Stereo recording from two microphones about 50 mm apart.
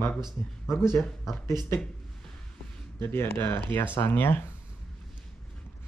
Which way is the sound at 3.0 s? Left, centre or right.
Left.